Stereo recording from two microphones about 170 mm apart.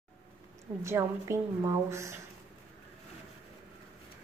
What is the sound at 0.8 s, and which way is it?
A woman's voice, 15° right (ahead or behind).